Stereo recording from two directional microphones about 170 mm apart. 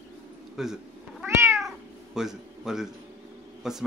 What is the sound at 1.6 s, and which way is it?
Cat, centre (ahead or behind).